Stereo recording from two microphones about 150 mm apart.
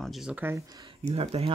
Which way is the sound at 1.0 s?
45° right (ahead or behind).